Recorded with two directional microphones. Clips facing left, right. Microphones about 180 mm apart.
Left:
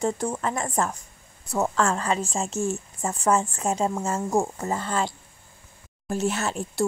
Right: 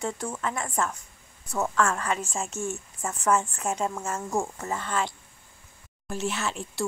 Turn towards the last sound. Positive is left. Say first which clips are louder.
# left 5 dB
turn(degrees=40)  # may be behind; listen again after turning